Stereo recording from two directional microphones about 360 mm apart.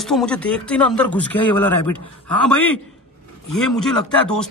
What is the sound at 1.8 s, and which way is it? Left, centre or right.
Speech, left.